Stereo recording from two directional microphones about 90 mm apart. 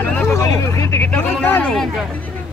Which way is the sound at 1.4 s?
20° left (ahead or behind).